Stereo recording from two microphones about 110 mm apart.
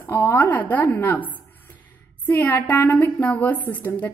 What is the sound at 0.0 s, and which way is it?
A woman's voice, 20° left (ahead or behind).